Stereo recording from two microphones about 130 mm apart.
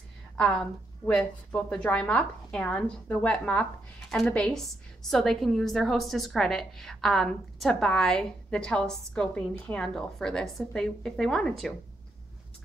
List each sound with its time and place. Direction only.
0.4 s a woman's voice: 10° left (ahead or behind)